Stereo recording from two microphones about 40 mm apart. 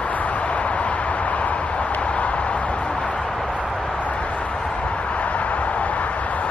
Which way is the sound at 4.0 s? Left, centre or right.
Left.